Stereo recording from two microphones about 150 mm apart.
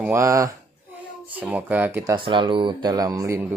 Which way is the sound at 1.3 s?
10° right (ahead or behind).